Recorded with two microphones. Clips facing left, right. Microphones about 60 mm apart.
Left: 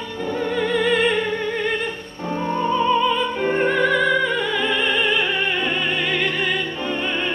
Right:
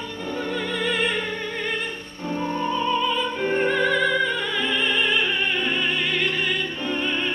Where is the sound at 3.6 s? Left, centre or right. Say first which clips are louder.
Left 3 dB; centre.